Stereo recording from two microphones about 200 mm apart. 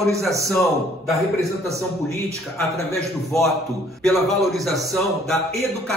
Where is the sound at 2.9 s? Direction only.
Centre (ahead or behind).